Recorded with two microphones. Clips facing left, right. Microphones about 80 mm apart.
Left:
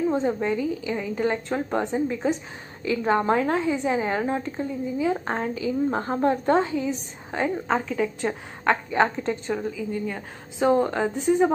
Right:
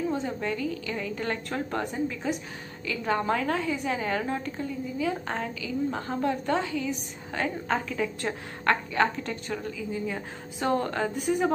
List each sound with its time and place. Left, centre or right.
0.1 s a woman's voice: left; by 8.7 s centre
8.9 s a woman's voice: left
9.9 s a woman's voice: centre
10.6 s a woman's voice: centre
11.1 s a woman's voice: left